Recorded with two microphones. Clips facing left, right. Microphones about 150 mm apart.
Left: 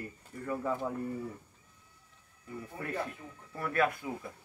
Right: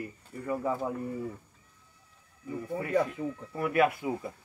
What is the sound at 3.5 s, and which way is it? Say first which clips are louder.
Speech: right 4 dB; 15° right (ahead or behind).